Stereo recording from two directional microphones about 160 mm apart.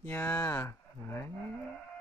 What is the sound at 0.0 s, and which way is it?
Speech, 10° left (ahead or behind).